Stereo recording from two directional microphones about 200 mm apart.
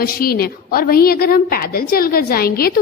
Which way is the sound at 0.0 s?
50° left (ahead or behind).